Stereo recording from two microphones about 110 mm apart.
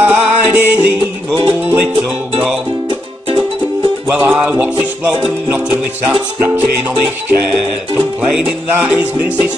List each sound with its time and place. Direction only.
0.0 s music: 20° right (ahead or behind)
4.1 s music: 15° right (ahead or behind)
8.7 s music: 15° right (ahead or behind)